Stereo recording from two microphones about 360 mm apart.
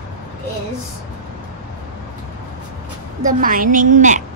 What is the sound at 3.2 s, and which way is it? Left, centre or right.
A woman's voice, right.